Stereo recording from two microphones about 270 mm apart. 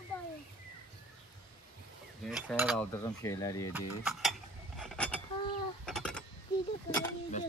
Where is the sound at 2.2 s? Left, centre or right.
Centre.